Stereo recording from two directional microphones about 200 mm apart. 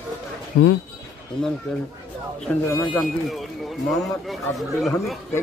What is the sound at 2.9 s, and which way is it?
Speech, centre (ahead or behind).